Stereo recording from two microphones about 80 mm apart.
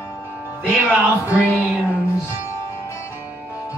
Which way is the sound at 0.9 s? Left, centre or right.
Centre.